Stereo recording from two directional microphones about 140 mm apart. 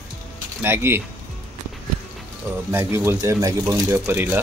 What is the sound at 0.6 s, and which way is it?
Speech, 15° right (ahead or behind).